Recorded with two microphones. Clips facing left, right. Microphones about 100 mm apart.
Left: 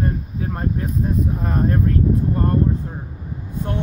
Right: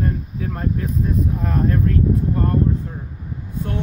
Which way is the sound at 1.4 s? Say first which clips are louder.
Even; 25° left (ahead or behind).